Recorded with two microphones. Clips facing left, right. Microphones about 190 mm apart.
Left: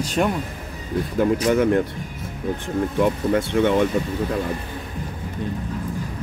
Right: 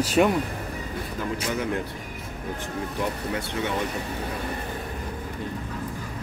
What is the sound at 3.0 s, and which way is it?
Speech, 60° left (ahead or behind).